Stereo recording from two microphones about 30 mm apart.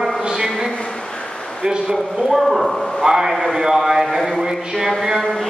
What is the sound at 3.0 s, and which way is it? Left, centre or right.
Speech, centre.